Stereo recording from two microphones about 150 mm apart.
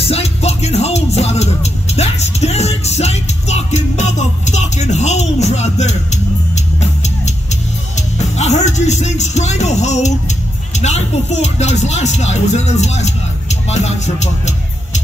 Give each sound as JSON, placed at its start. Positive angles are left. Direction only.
{"t": 0.0, "sound": "music", "side_deg": 45}